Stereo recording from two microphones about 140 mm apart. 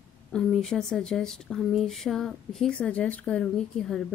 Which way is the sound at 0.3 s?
5° left (ahead or behind).